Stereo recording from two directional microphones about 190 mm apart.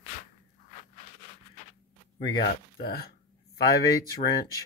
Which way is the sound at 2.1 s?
25° left (ahead or behind).